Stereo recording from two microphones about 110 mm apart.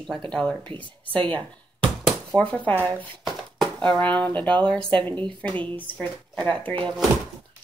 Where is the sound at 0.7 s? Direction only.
50° right (ahead or behind).